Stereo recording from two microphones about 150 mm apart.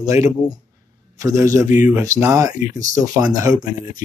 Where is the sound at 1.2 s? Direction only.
20° right (ahead or behind).